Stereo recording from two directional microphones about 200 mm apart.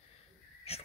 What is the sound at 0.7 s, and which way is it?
Speech, 30° left (ahead or behind).